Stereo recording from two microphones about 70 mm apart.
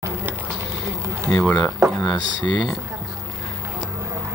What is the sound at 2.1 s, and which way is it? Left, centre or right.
Speech, left.